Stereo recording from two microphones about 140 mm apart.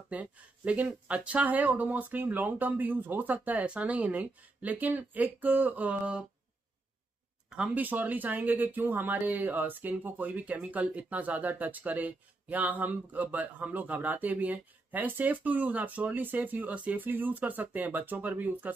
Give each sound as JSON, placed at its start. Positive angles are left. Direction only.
{"t": 0.1, "sound": "speech", "side_deg": -10}
{"t": 7.4, "sound": "speech", "side_deg": -5}